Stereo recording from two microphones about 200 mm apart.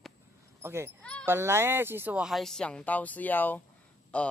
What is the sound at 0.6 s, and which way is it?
Speech, 10° right (ahead or behind).